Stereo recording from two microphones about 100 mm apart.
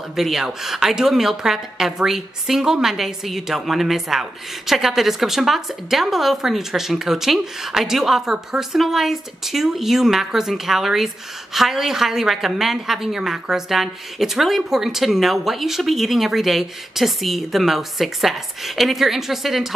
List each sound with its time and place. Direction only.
0.1 s a woman's voice: centre (ahead or behind)